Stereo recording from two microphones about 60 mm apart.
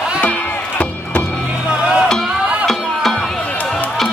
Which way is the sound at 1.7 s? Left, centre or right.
Centre.